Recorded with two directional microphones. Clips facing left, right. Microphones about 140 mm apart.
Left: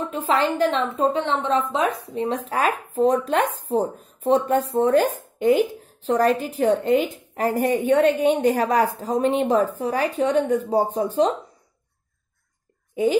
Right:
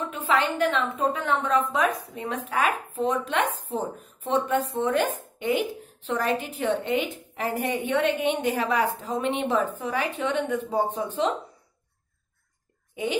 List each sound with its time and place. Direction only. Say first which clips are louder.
0.1 s speech: left 3 dB; 35° left (ahead or behind)
12.9 s speech: left 8 dB; 40° left (ahead or behind)